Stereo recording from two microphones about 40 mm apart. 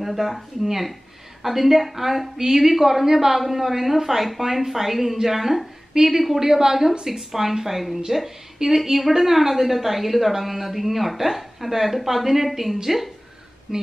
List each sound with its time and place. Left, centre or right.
0.0 s a woman's voice: centre